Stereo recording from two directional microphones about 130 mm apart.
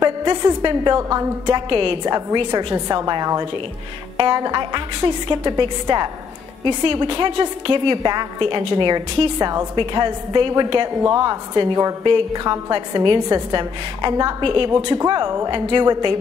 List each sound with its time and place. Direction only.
0.0 s a woman's voice: 35° right (ahead or behind)
1.4 s a woman's voice: 40° right (ahead or behind)
2.0 s a woman's voice: 30° right (ahead or behind)
15.0 s a woman's voice: 30° right (ahead or behind)